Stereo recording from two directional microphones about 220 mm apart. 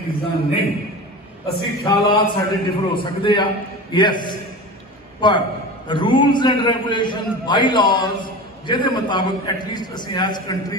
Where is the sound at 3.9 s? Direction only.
20° left (ahead or behind).